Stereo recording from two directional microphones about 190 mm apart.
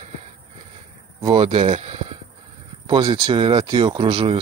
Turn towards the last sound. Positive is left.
turn(degrees=-25)  # may be behind; listen again after turning